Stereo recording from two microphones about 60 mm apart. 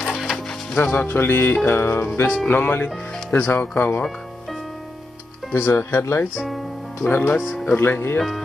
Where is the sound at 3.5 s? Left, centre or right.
Left.